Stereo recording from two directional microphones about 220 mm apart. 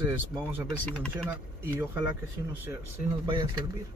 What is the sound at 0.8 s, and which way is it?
Speech, 5° left (ahead or behind).